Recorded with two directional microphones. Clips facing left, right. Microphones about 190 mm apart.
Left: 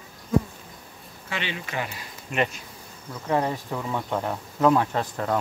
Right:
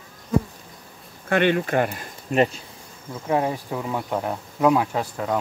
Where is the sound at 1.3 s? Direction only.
55° right (ahead or behind).